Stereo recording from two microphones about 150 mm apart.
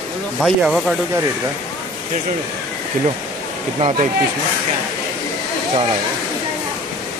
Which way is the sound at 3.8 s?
40° right (ahead or behind).